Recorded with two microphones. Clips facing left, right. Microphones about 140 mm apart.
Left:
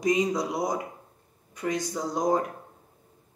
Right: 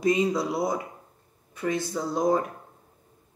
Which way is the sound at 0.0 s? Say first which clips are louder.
Right 1 dB; 20° left (ahead or behind).